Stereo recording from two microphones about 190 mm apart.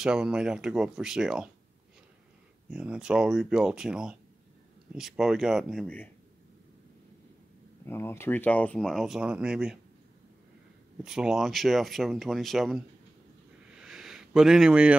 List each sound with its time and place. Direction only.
0.0 s speech: 5° right (ahead or behind)
2.7 s speech: 5° right (ahead or behind)
7.8 s speech: 10° left (ahead or behind); by 9.8 s 5° right (ahead or behind)
11.1 s speech: centre (ahead or behind)
13.7 s a sound: 5° right (ahead or behind)